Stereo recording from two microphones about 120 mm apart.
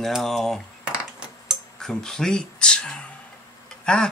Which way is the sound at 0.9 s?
10° right (ahead or behind).